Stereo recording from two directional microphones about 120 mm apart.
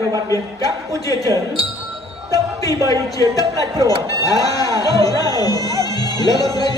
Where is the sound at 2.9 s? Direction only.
30° left (ahead or behind).